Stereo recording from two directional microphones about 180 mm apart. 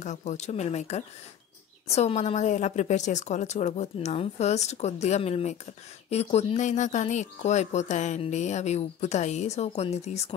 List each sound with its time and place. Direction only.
0.0 s speech: 40° left (ahead or behind)